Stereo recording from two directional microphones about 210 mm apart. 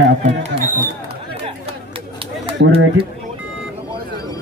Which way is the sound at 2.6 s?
60° right (ahead or behind).